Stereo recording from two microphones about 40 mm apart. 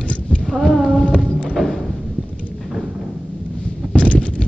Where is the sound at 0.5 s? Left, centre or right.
Centre.